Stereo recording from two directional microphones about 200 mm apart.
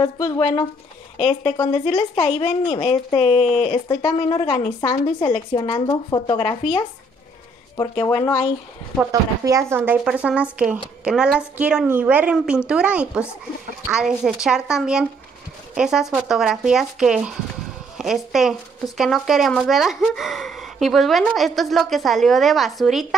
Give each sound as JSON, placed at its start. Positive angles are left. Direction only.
{"t": 0.0, "sound": "speech", "side_deg": 25}
{"t": 8.1, "sound": "speech", "side_deg": 20}
{"t": 9.1, "sound": "speech", "side_deg": -15}